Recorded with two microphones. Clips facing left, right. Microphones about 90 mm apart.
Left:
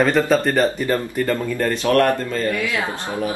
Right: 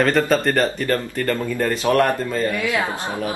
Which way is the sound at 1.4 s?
5° right (ahead or behind).